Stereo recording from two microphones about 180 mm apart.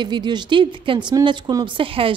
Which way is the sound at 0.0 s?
25° right (ahead or behind).